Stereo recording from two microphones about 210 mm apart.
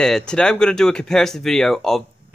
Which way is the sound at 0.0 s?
5° left (ahead or behind).